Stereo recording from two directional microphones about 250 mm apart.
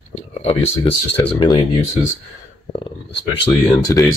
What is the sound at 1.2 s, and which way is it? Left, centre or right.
Speech, left.